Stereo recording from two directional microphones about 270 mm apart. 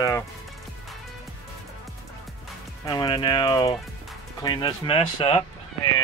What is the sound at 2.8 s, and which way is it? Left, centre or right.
Speech, centre.